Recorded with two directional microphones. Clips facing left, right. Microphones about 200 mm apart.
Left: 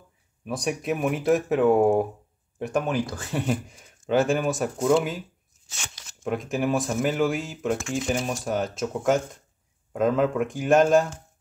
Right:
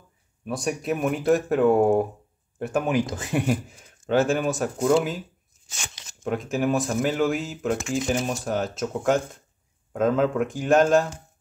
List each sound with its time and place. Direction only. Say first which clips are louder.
0.5 s speech: right 1 dB; centre (ahead or behind)
2.9 s speech: right 3 dB; 20° right (ahead or behind)
3.4 s speech: right 2 dB; centre (ahead or behind)
6.2 s speech: right 1 dB; centre (ahead or behind)